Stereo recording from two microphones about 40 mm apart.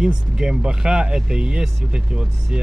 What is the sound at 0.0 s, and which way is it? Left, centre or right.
Speech, right.